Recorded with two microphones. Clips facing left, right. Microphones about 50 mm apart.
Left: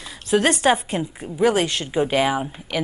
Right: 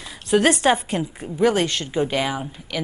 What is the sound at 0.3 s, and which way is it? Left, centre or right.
A woman's voice, centre.